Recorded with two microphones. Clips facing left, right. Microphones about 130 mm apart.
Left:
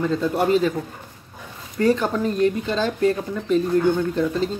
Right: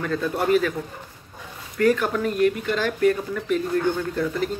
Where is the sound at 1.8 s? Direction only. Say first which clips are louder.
Left 1 dB; 25° left (ahead or behind).